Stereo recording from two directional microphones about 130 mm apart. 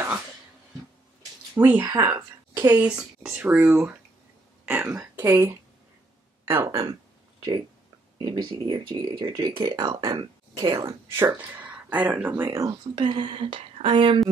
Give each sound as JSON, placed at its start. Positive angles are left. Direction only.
{"t": 1.5, "sound": "speech", "side_deg": -15}
{"t": 2.7, "sound": "speech", "side_deg": -10}
{"t": 6.5, "sound": "speech", "side_deg": -20}
{"t": 8.2, "sound": "speech", "side_deg": -35}
{"t": 11.5, "sound": "speech", "side_deg": -10}
{"t": 12.9, "sound": "speech", "side_deg": -35}